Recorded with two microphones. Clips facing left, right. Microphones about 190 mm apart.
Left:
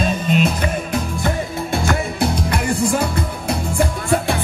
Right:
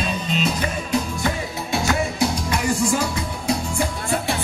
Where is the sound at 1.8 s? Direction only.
55° left (ahead or behind).